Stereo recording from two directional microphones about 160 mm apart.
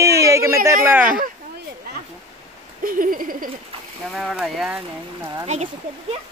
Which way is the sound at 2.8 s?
60° right (ahead or behind).